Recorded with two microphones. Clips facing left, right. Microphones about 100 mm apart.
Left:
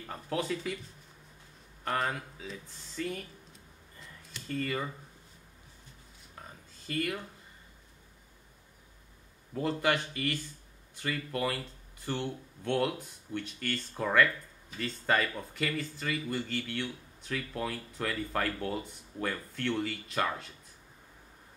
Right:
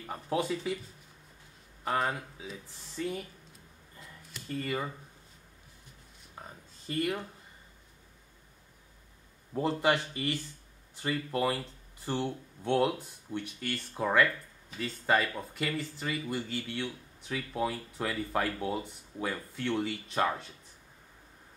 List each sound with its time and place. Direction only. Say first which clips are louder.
0.0 s speech: right 2 dB; 15° right (ahead or behind)
1.9 s speech: right 1 dB; 5° right (ahead or behind)
4.0 s a sound: even; 5° right (ahead or behind)
6.4 s a sound: right 2 dB; 20° right (ahead or behind)
6.9 s speech: right 2 dB; 20° right (ahead or behind)
9.5 s speech: right 2 dB; 20° right (ahead or behind)